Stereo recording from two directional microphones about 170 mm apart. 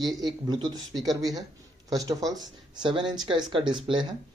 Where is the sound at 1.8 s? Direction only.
20° right (ahead or behind).